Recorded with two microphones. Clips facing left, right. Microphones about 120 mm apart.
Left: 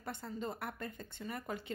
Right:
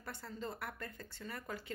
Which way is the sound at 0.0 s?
20° left (ahead or behind).